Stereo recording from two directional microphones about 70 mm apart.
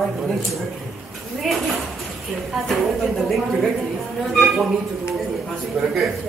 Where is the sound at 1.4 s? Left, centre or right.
Centre.